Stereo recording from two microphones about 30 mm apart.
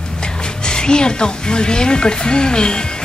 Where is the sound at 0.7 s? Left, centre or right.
Left.